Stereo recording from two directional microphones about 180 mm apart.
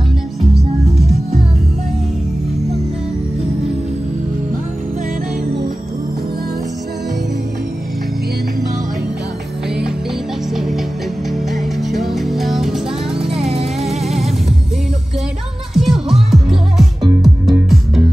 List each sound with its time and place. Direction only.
10.5 s music: centre (ahead or behind)
13.1 s music: 30° right (ahead or behind)
13.8 s music: centre (ahead or behind)
15.7 s music: centre (ahead or behind)